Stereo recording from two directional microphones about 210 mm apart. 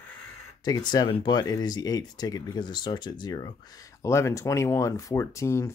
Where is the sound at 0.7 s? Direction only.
20° left (ahead or behind).